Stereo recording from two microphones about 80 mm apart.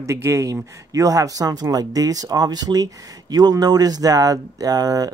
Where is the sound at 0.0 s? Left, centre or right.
Right.